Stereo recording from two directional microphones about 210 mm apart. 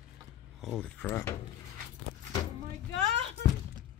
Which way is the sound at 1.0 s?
10° left (ahead or behind).